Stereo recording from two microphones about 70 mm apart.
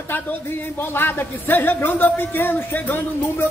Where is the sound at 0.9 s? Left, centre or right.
Left.